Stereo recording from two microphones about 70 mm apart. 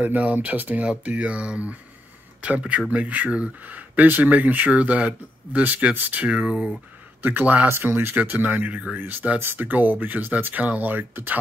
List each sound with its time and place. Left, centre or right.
0.0 s speech: right